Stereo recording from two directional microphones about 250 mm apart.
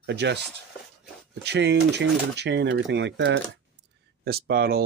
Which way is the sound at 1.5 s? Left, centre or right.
Right.